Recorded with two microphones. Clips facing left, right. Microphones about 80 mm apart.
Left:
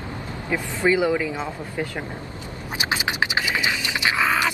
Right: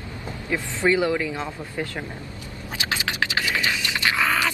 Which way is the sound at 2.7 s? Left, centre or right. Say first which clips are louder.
Left 2 dB; left.